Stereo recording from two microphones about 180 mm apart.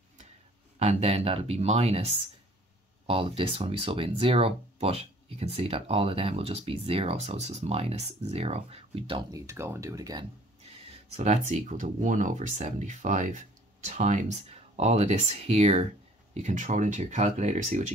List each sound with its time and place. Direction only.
0.7 s speech: 35° right (ahead or behind)
9.3 s speech: 15° right (ahead or behind)
11.1 s speech: 40° right (ahead or behind)